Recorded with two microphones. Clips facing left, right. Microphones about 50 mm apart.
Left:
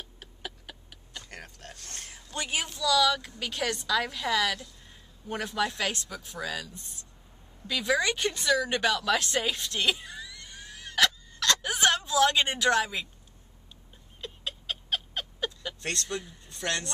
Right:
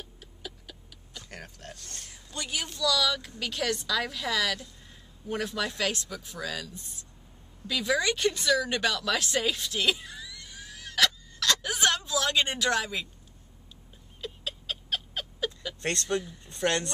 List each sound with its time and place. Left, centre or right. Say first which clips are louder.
0.2 s a sound: left 2 dB; left
1.2 s speech: right 1 dB; centre
1.8 s speech: left 2 dB; left
2.3 s a woman's voice: left 2 dB; left
2.7 s a woman's voice: left 3 dB; centre
14.2 s cat: even; centre
15.8 s speech: right 5 dB; right